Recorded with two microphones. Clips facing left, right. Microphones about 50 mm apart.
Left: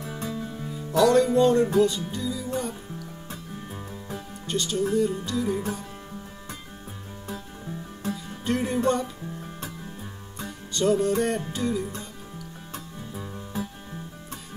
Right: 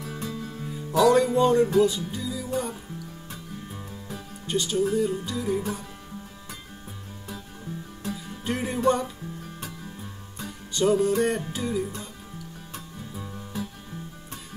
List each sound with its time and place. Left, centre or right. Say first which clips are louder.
0.0 s music: left 1 dB; centre
0.7 s music: right 1 dB; centre
3.3 s music: left 1 dB; centre
4.5 s music: right 1 dB; centre
8.5 s music: even; centre
10.7 s music: right 1 dB; centre
13.1 s music: left 2 dB; centre